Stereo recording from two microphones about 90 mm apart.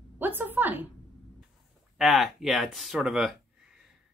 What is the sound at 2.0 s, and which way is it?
Speech, 5° right (ahead or behind).